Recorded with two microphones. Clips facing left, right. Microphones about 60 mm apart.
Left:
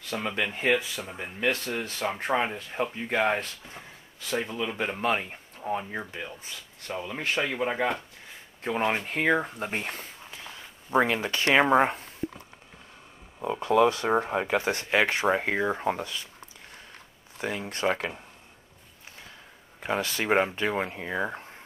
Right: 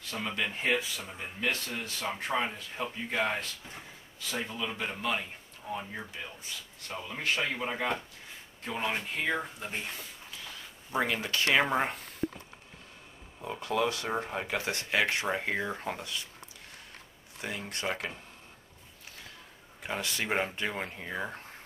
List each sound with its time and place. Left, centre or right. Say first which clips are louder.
0.1 s speech: left 5 dB; left
0.4 s speech: left 4 dB; left
4.4 s speech: left 4 dB; centre
4.7 s speech: left 7 dB; left
8.6 s speech: left 6 dB; left
11.0 s speech: left 5 dB; left
13.5 s speech: left 8 dB; left
17.4 s speech: left 7 dB; left
19.8 s speech: left 6 dB; left